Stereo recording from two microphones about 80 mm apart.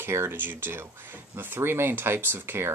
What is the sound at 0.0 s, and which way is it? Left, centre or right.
Speech, right.